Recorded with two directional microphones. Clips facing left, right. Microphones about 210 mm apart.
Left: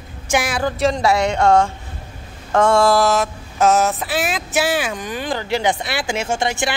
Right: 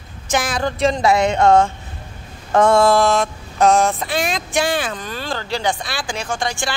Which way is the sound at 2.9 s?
5° left (ahead or behind).